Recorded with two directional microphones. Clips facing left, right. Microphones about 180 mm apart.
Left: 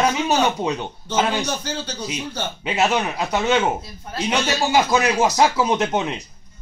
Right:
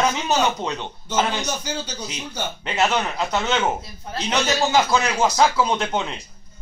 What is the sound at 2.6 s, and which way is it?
A man's voice, 5° left (ahead or behind).